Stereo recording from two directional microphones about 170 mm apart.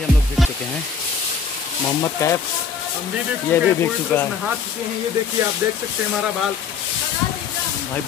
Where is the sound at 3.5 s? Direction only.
10° left (ahead or behind).